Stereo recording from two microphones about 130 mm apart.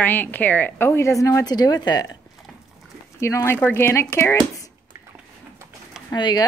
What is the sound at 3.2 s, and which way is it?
A woman's voice, 20° left (ahead or behind).